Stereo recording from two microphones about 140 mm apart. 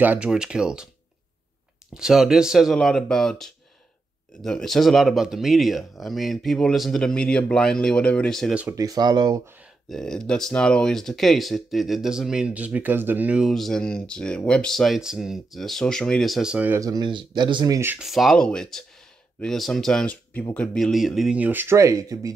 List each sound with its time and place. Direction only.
0.0 s speech: 10° right (ahead or behind)
2.0 s speech: 5° right (ahead or behind)
8.7 s speech: 25° right (ahead or behind)
9.8 s speech: 5° left (ahead or behind)
16.8 s speech: 30° right (ahead or behind)
17.9 s speech: centre (ahead or behind); by 22.3 s 25° right (ahead or behind)